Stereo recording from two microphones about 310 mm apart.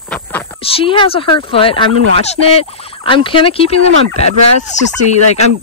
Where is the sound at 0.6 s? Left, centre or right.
Centre.